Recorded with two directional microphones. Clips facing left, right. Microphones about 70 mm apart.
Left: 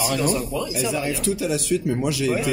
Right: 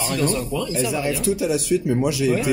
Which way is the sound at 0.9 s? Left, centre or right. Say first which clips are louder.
Right 2 dB; centre.